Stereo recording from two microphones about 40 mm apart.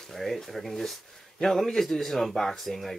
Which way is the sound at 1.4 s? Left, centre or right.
Centre.